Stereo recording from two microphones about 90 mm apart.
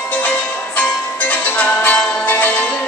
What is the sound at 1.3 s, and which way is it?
Music, 15° left (ahead or behind).